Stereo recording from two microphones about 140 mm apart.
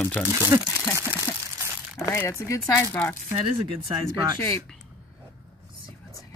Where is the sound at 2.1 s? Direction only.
20° left (ahead or behind).